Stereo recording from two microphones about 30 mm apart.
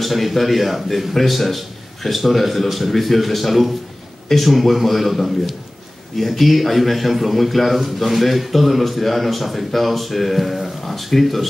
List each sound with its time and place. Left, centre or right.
0.0 s a man's voice: centre